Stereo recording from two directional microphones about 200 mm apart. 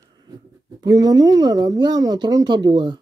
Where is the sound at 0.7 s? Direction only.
20° right (ahead or behind).